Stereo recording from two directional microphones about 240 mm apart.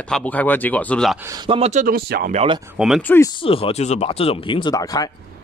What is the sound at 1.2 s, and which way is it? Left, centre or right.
Speech, centre.